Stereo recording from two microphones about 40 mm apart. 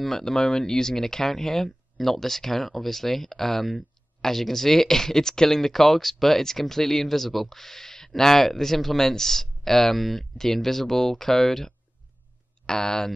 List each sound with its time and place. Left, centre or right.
0.2 s speech: centre